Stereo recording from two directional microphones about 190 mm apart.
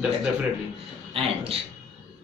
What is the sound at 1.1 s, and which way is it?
Speech, 30° right (ahead or behind).